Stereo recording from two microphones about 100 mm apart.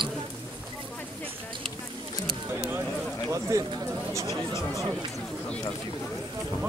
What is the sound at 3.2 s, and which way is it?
Speech, 30° right (ahead or behind).